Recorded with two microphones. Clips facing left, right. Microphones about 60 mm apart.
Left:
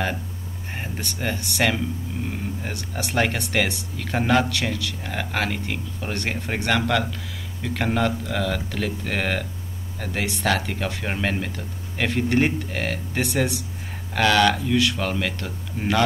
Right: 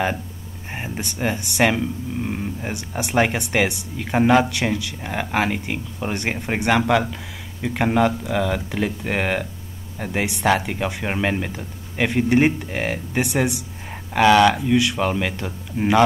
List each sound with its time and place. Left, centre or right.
0.7 s speech: centre